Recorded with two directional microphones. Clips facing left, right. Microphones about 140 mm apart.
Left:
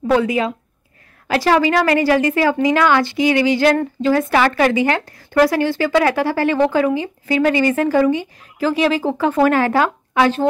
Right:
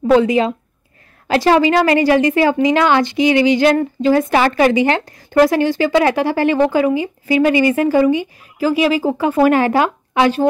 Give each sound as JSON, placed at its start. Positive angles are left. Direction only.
{"t": 0.0, "sound": "a woman's voice", "side_deg": -25}